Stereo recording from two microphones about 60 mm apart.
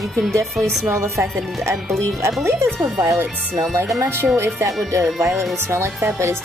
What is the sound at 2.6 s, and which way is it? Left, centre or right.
A woman's voice, right.